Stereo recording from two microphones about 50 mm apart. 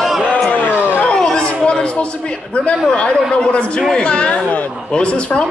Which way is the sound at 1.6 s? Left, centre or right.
Centre.